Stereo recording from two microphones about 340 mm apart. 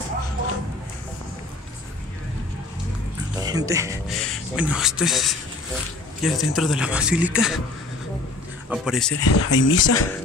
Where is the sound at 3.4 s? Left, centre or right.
Centre.